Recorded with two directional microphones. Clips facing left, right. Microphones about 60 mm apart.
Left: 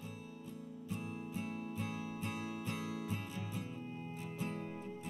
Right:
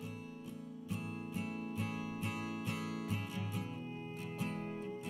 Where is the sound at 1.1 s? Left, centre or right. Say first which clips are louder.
Right 1 dB; right.